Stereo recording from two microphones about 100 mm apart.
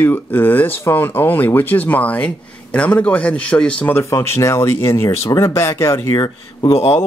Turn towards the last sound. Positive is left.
turn(degrees=90)